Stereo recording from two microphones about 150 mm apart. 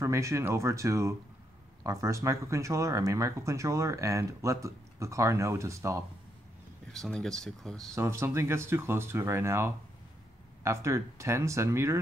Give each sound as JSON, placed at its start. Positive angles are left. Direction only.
{"t": 0.0, "sound": "speech", "side_deg": -20}
{"t": 6.9, "sound": "speech", "side_deg": 5}
{"t": 7.9, "sound": "speech", "side_deg": -15}